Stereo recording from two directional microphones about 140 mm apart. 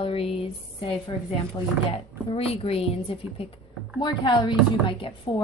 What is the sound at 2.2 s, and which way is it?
Speech, 45° left (ahead or behind).